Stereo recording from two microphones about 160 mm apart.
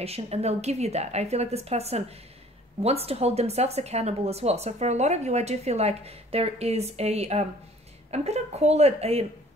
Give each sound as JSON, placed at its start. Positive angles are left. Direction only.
{"t": 0.0, "sound": "speech", "side_deg": -40}